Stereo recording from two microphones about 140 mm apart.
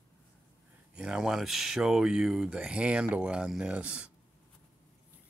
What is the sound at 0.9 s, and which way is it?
Speech, 5° right (ahead or behind).